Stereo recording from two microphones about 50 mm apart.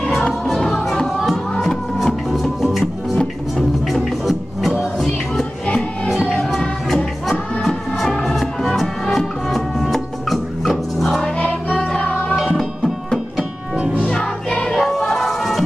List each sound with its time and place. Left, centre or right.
0.0 s music: centre
6.2 s music: centre
11.3 s music: left
12.4 s music: centre
13.9 s music: centre
14.8 s music: centre